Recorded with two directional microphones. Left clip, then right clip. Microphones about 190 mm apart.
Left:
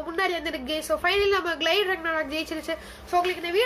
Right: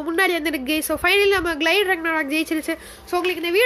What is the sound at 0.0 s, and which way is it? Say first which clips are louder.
A woman's voice: right 6 dB; 45° right (ahead or behind).